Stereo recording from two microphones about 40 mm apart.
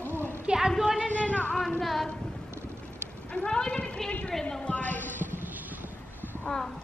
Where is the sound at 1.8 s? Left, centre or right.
Centre.